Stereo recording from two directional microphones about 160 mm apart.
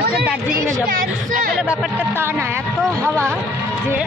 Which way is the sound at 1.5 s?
5° right (ahead or behind).